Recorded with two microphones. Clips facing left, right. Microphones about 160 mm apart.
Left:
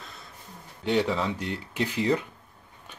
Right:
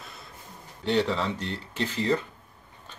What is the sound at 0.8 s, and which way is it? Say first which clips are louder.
A man's voice: even; 10° left (ahead or behind).